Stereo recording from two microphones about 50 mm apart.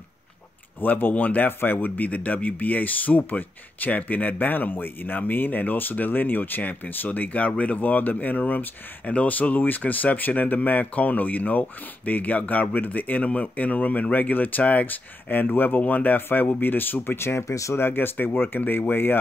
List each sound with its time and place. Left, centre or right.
0.7 s speech: left
17.5 s speech: left
17.7 s speech: left